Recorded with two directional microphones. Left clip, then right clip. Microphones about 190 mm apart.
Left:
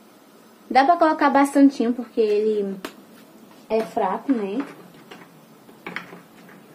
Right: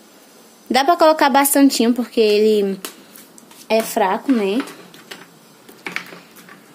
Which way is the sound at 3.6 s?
60° right (ahead or behind).